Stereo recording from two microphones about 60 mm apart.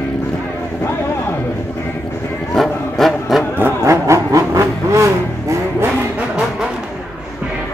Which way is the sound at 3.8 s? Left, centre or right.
Right.